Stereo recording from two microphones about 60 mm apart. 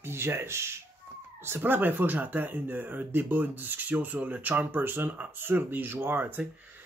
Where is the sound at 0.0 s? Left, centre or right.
Right.